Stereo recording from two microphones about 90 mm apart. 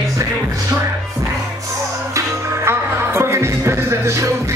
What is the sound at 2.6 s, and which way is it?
Music, 30° right (ahead or behind).